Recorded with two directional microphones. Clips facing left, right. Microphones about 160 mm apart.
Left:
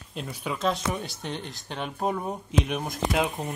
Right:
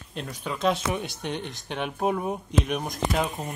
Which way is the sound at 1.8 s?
5° right (ahead or behind).